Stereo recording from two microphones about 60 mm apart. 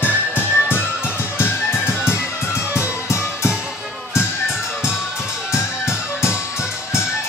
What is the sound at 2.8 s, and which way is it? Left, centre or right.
Music, left.